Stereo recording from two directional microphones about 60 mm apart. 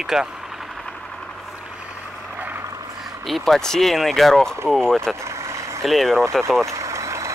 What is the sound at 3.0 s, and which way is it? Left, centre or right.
Speech, centre.